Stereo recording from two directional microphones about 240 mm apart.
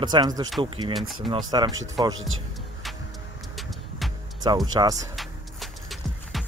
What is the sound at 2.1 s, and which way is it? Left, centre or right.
Speech, right.